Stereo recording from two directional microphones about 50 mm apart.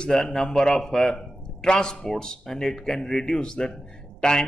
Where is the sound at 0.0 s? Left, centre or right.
Centre.